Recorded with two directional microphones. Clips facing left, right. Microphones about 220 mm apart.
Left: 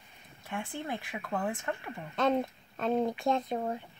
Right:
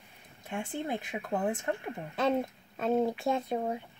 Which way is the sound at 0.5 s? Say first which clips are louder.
Right 2 dB; 20° right (ahead or behind).